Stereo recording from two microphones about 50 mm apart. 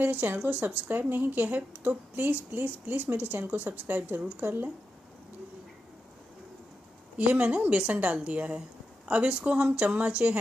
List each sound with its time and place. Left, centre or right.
0.0 s a woman's voice: right
7.2 s a woman's voice: right